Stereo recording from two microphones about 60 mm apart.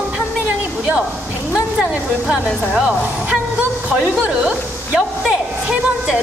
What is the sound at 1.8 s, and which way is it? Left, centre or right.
Speech, centre.